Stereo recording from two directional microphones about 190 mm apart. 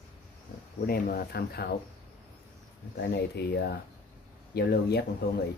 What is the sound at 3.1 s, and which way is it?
Speech, 60° left (ahead or behind).